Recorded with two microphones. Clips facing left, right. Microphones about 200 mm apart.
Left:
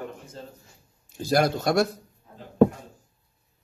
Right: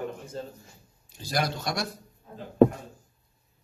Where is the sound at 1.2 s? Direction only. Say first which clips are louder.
Left 7 dB; 50° left (ahead or behind).